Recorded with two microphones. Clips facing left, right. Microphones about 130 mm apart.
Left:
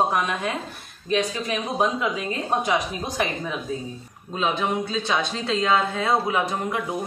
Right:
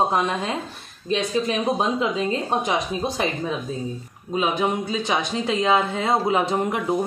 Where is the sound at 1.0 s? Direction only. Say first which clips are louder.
Right 2 dB; 25° right (ahead or behind).